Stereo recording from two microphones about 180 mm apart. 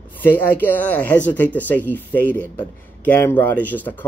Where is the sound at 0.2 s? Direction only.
10° left (ahead or behind).